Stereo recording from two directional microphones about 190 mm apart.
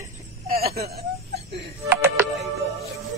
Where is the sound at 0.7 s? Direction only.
55° right (ahead or behind).